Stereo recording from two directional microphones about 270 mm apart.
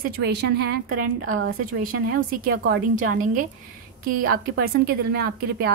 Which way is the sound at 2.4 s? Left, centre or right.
Right.